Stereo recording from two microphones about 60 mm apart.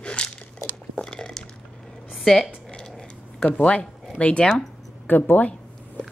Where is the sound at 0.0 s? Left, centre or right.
Centre.